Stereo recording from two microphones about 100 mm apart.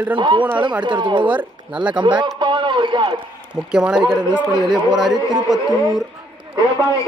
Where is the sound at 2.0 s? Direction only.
50° right (ahead or behind).